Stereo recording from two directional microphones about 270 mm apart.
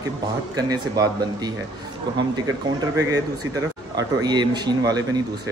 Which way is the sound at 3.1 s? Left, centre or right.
Centre.